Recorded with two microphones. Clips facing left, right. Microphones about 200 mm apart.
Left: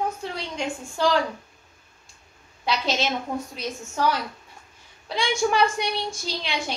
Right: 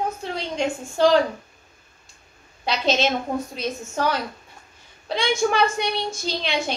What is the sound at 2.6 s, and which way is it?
A woman's voice, 20° right (ahead or behind).